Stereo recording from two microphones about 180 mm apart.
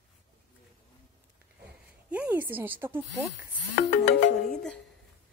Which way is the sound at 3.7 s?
45° left (ahead or behind).